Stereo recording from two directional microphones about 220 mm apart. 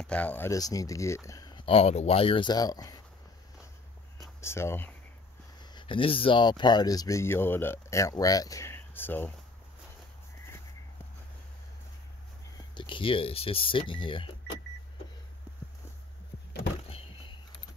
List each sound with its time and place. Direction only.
0.0 s speech: 5° left (ahead or behind)
4.4 s speech: 10° left (ahead or behind)
12.7 s speech: 20° left (ahead or behind)